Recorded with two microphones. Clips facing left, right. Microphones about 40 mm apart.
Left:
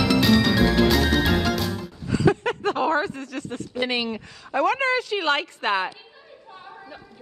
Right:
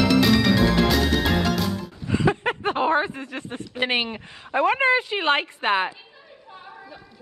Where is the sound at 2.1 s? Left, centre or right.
Right.